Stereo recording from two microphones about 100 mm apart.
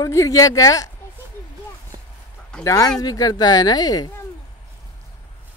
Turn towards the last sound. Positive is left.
turn(degrees=40)  # may be behind; listen again after turning